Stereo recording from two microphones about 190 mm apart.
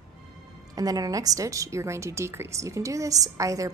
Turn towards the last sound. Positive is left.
turn(degrees=-15)  # may be behind; listen again after turning